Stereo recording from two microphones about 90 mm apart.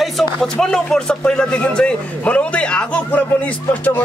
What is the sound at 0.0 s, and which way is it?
Speech, 5° left (ahead or behind).